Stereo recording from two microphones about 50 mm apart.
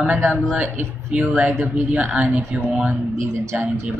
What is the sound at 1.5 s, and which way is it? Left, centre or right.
Speech, right.